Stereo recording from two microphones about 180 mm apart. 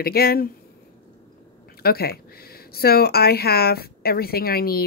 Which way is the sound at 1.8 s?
60° left (ahead or behind).